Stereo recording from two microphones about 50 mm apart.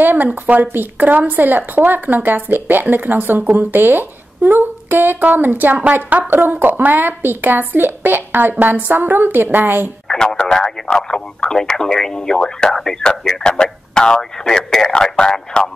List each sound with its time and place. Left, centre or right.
0.0 s speech: right
6.3 s a woman's voice: right
10.0 s speech: centre